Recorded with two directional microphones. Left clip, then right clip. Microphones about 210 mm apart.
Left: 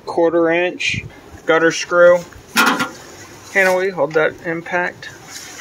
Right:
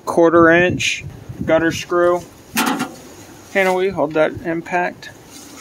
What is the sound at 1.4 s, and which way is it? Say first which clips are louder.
Speech: left 2 dB; 20° right (ahead or behind).